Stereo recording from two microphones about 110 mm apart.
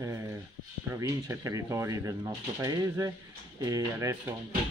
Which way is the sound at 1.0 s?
30° right (ahead or behind).